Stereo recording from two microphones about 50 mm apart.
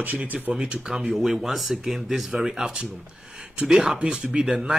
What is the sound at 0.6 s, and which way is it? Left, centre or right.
Speech, centre.